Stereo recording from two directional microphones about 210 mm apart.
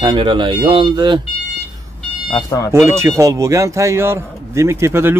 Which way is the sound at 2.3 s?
20° left (ahead or behind).